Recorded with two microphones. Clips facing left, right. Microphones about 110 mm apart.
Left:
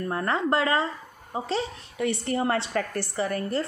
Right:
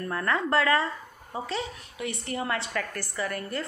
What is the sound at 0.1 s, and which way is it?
A woman's voice, 25° left (ahead or behind).